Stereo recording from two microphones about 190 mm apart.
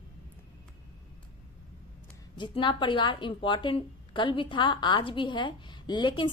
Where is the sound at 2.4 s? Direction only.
25° left (ahead or behind).